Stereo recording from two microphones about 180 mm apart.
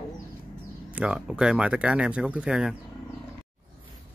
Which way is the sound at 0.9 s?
5° right (ahead or behind).